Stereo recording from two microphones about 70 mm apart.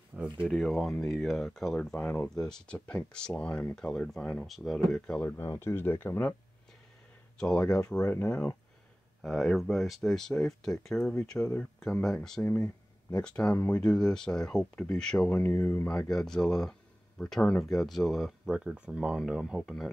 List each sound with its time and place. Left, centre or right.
0.1 s a sound: right
0.5 s speech: centre
2.0 s speech: left
2.2 s speech: centre
4.5 s speech: centre
5.2 s speech: left
7.3 s speech: centre
9.2 s speech: centre
12.4 s speech: left
13.2 s speech: centre
15.2 s speech: left
15.9 s speech: centre